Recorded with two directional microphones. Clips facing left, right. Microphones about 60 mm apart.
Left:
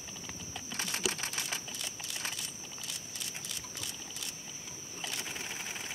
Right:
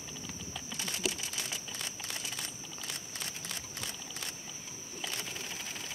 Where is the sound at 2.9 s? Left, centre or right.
Right.